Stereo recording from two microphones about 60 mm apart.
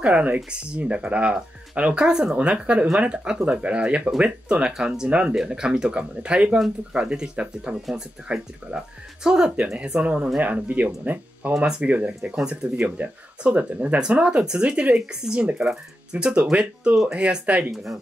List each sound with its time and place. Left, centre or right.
0.0 s speech: right
11.5 s speech: centre